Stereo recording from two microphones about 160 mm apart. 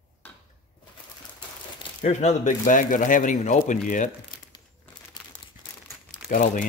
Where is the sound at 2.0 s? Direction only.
45° left (ahead or behind).